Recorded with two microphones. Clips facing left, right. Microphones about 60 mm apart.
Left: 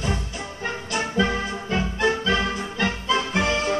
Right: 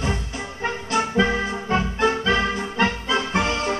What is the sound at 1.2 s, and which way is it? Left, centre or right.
Music, right.